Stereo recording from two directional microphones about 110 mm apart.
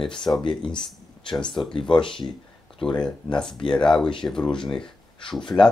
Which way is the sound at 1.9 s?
50° left (ahead or behind).